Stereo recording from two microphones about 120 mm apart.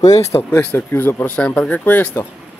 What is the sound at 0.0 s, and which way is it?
Speech, 25° left (ahead or behind).